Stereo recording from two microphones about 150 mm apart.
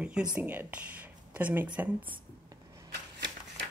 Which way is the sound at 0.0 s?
5° right (ahead or behind).